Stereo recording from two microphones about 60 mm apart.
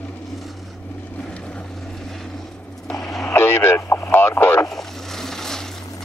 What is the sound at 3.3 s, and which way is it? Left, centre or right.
Radio, left.